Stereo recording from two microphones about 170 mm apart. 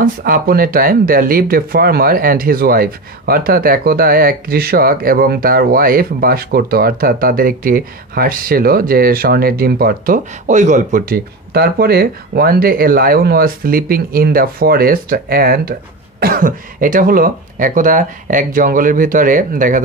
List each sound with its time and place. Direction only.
0.0 s speech: 60° right (ahead or behind)